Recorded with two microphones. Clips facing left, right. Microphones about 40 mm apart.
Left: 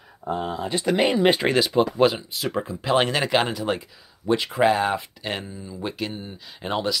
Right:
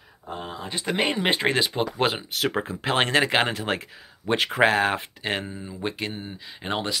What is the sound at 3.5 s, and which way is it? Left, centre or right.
Speech, right.